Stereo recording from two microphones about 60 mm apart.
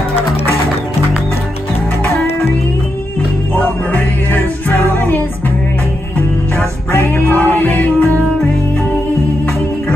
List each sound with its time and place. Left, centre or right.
3.5 s music: left
6.9 s music: left